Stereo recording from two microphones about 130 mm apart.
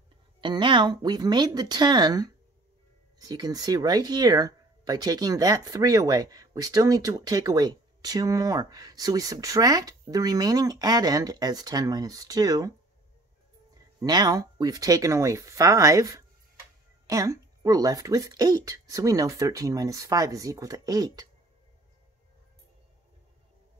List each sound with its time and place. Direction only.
0.4 s speech: 40° right (ahead or behind)
14.0 s speech: 30° right (ahead or behind)